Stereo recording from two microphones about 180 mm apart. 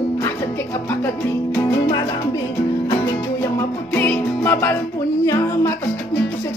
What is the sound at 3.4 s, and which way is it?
Music, 10° left (ahead or behind).